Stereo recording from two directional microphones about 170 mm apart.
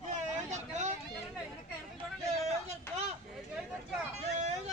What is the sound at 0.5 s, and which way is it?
Vehicle, 45° right (ahead or behind).